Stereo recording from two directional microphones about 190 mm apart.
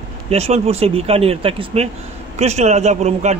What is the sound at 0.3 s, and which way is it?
A man's voice, 35° right (ahead or behind).